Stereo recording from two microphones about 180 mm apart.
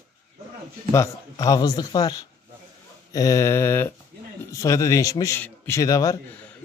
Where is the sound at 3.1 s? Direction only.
20° left (ahead or behind).